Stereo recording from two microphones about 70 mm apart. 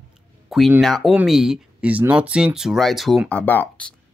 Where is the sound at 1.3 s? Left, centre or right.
Centre.